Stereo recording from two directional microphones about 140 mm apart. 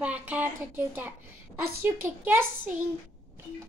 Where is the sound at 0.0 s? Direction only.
10° right (ahead or behind).